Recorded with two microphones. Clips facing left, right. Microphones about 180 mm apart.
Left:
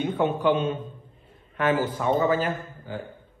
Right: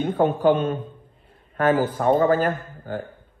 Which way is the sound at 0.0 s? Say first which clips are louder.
Right 4 dB; 45° right (ahead or behind).